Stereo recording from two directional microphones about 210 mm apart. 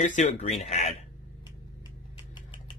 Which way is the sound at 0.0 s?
35° left (ahead or behind).